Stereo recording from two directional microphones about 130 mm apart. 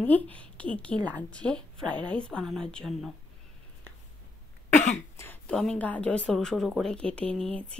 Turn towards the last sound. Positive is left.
turn(degrees=10)  # may be behind; listen again after turning